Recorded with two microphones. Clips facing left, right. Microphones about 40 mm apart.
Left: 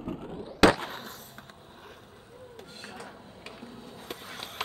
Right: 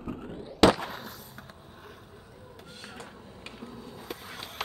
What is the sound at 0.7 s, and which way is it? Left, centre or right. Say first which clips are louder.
Skateboard: left 1 dB; left.